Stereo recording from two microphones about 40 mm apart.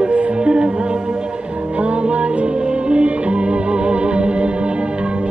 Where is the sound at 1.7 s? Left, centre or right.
Right.